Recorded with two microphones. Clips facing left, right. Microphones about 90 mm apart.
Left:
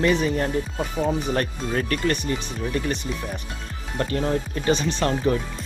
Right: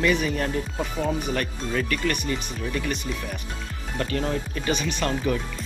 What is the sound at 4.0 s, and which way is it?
Speech, 25° left (ahead or behind).